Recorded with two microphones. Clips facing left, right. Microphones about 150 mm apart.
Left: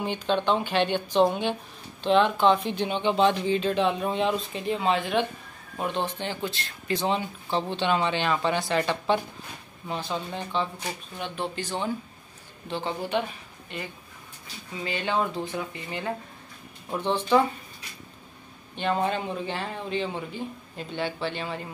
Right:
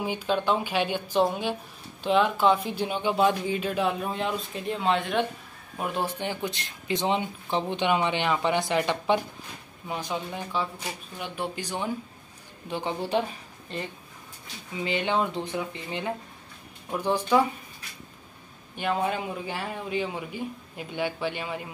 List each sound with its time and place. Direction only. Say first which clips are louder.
0.0 s speech: left 1 dB; 5° right (ahead or behind)
13.0 s a woman's voice: right 1 dB; 30° right (ahead or behind)
14.8 s speech: right 1 dB; 20° right (ahead or behind)
18.8 s speech: left 1 dB; 5° right (ahead or behind)